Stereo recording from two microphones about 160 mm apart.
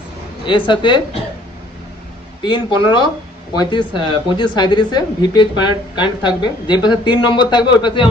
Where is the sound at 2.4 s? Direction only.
30° left (ahead or behind).